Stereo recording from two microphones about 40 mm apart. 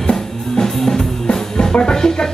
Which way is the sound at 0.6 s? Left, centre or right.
Centre.